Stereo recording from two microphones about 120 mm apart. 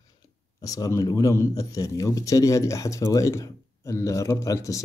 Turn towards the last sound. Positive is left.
turn(degrees=25)  # may be behind; listen again after turning